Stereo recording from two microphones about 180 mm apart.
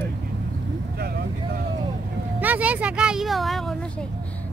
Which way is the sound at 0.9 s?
60° right (ahead or behind).